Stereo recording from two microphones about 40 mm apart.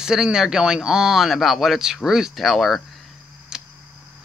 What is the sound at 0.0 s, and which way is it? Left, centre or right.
Speech, centre.